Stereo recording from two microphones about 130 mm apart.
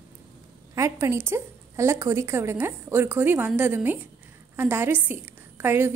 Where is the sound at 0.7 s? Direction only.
20° right (ahead or behind).